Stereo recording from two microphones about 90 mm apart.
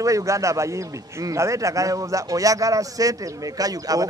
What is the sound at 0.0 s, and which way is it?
A man's voice, 35° right (ahead or behind).